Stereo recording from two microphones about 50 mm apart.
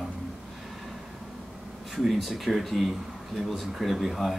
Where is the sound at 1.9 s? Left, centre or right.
Centre.